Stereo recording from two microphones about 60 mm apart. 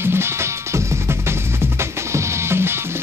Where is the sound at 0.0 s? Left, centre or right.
Right.